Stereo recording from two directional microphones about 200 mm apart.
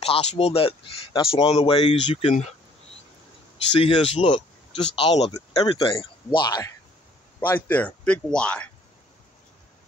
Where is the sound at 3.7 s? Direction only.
30° left (ahead or behind).